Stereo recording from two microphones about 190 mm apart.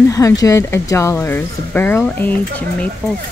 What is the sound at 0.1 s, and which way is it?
Speech, 15° left (ahead or behind).